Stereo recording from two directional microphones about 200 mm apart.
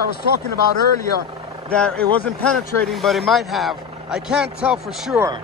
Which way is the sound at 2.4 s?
5° left (ahead or behind).